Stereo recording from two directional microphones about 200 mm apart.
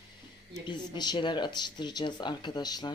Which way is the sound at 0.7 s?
20° left (ahead or behind).